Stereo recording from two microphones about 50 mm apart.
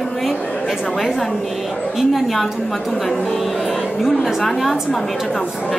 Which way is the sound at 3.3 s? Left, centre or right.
Centre.